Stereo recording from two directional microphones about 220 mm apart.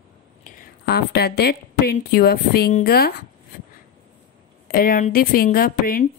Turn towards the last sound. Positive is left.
turn(degrees=40)  # may be behind; listen again after turning